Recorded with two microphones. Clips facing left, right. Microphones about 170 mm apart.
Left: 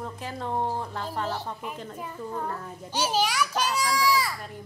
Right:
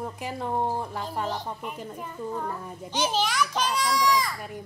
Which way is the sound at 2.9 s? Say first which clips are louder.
Even; 10° left (ahead or behind).